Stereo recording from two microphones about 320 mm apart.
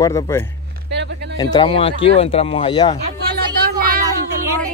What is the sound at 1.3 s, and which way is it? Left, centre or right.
Speech, centre.